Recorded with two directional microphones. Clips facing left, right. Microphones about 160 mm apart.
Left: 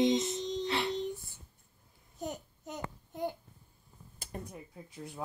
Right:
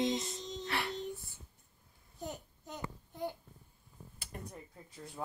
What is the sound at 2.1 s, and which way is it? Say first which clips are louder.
Babbling: left 4 dB; 20° left (ahead or behind).